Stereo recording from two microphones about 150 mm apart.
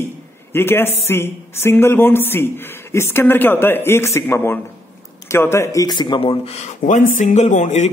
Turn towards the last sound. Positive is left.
turn(degrees=55)  # may be behind; listen again after turning